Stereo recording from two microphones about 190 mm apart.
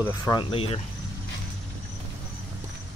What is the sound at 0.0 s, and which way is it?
Speech, 20° left (ahead or behind).